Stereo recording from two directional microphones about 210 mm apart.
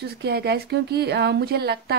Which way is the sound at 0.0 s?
50° right (ahead or behind).